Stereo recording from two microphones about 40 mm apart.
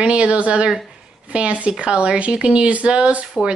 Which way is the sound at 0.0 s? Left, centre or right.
Right.